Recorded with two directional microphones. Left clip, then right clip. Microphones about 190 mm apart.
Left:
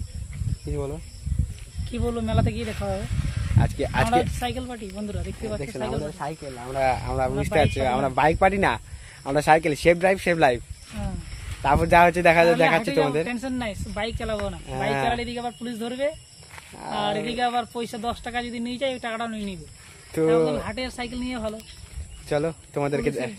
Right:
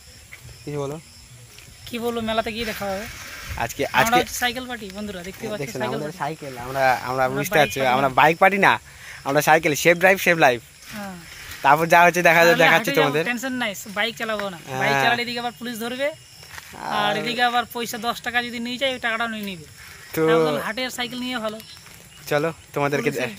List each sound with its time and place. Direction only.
0.7 s speech: 30° right (ahead or behind)
1.9 s speech: centre (ahead or behind)
4.4 s speech: 10° left (ahead or behind)
5.6 s speech: 30° right (ahead or behind)
6.7 s speech: 5° right (ahead or behind)
13.3 s speech: centre (ahead or behind)
22.3 s speech: 10° right (ahead or behind)